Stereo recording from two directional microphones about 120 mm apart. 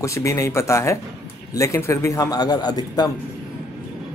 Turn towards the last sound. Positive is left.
turn(degrees=35)  # may be behind; listen again after turning